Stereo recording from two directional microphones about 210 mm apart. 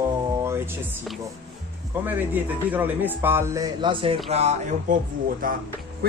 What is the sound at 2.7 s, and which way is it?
Speech, 10° right (ahead or behind).